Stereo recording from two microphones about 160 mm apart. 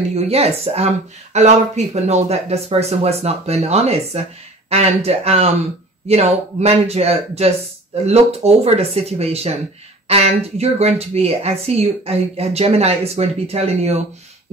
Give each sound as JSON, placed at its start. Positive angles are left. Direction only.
{"t": 0.1, "sound": "speech", "side_deg": -40}